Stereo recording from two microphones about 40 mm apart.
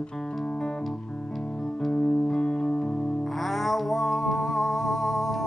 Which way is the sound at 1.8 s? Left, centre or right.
Centre.